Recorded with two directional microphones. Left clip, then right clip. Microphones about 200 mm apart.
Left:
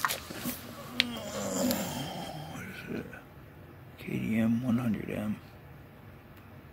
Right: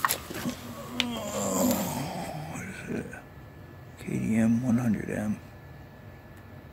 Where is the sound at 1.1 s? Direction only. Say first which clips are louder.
Right 5 dB; 10° right (ahead or behind).